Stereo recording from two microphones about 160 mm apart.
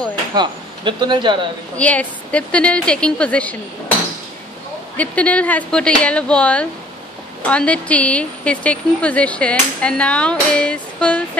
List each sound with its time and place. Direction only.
0.3 s speech: 30° right (ahead or behind)
1.8 s a woman's voice: 10° left (ahead or behind)
4.9 s a woman's voice: 10° left (ahead or behind)